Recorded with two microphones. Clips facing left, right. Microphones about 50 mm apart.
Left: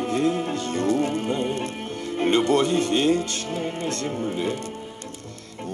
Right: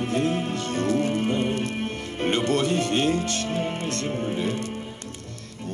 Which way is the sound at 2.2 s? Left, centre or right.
Right.